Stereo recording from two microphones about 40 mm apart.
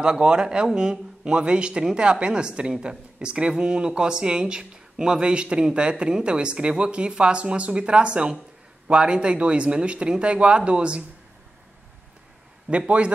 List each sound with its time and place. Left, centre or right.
0.0 s speech: right
12.6 s a man's voice: right